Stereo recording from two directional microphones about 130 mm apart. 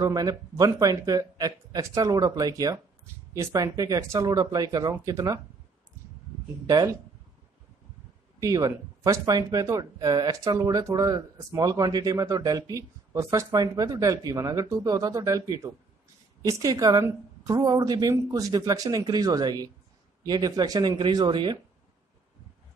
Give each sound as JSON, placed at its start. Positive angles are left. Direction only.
{"t": 0.0, "sound": "speech", "side_deg": -30}
{"t": 6.7, "sound": "speech", "side_deg": -30}
{"t": 8.4, "sound": "speech", "side_deg": -25}